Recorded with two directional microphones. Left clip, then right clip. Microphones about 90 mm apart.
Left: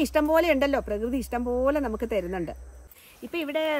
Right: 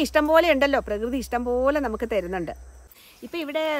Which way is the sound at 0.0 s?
40° right (ahead or behind).